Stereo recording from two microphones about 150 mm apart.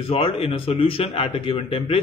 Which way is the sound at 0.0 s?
40° left (ahead or behind).